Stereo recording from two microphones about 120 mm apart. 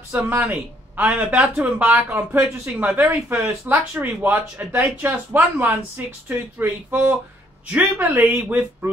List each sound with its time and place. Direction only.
0.4 s speech: 15° right (ahead or behind)